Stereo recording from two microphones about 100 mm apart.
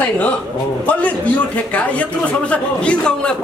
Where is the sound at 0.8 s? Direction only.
15° left (ahead or behind).